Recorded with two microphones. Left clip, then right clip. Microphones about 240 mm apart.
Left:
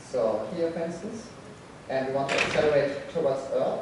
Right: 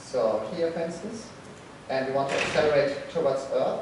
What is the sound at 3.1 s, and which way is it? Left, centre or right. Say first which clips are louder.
Speech: right 1 dB; centre.